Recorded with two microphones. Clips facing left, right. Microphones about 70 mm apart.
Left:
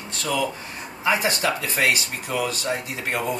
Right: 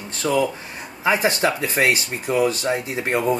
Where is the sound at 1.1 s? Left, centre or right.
Right.